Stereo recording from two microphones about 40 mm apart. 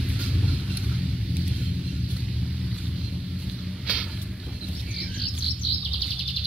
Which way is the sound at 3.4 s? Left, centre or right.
Centre.